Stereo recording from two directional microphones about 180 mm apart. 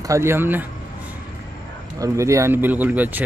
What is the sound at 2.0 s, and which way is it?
Speech, 15° right (ahead or behind).